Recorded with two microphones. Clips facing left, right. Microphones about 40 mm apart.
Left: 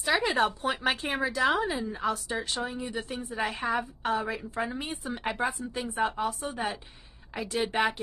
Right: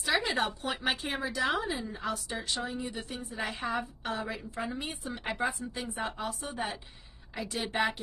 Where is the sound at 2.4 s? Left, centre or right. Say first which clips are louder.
Left 2 dB; left.